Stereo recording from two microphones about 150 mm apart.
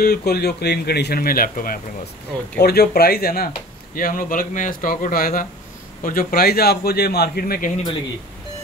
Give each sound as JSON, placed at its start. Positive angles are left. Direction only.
{"t": 0.0, "sound": "speech", "side_deg": 90}
{"t": 2.6, "sound": "speech", "side_deg": 90}
{"t": 3.9, "sound": "a man's voice", "side_deg": 70}